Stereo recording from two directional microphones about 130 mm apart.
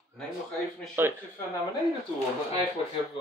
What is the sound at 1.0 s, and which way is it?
Speech, 15° right (ahead or behind).